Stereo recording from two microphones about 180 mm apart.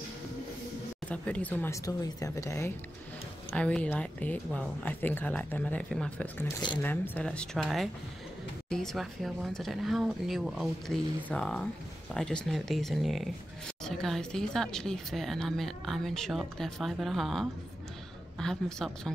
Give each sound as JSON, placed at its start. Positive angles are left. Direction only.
{"t": 1.0, "sound": "speech", "side_deg": 5}
{"t": 6.4, "sound": "speech", "side_deg": 25}
{"t": 6.8, "sound": "speech", "side_deg": 10}